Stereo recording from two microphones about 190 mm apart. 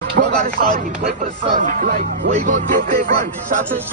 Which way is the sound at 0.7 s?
45° right (ahead or behind).